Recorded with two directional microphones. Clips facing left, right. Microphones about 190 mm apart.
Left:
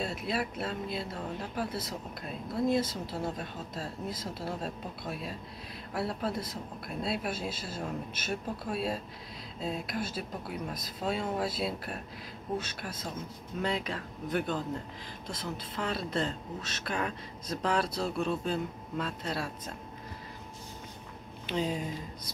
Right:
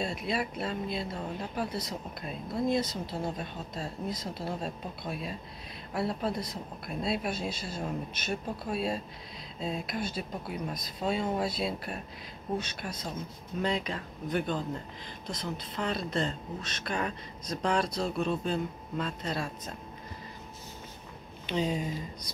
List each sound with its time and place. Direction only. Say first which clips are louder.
0.0 s speech: right 1 dB; 5° left (ahead or behind)
21.5 s speech: right 1 dB; 5° left (ahead or behind)